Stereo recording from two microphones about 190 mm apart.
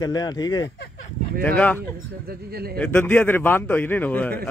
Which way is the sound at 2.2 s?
55° right (ahead or behind).